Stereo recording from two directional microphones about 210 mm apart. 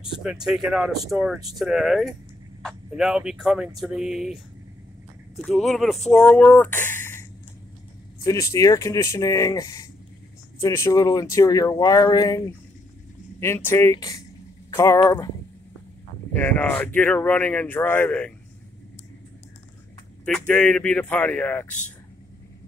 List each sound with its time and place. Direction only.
0.0 s speech: 5° right (ahead or behind)
5.4 s speech: centre (ahead or behind); by 15.3 s 15° left (ahead or behind)
16.3 s speech: 10° left (ahead or behind)
20.2 s speech: 5° left (ahead or behind)